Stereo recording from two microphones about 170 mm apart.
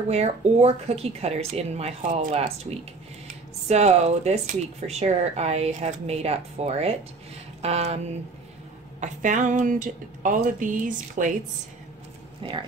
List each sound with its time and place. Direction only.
0.1 s speech: 40° right (ahead or behind)
3.6 s speech: 40° right (ahead or behind)
9.0 s speech: 45° right (ahead or behind)
12.4 s speech: 30° right (ahead or behind)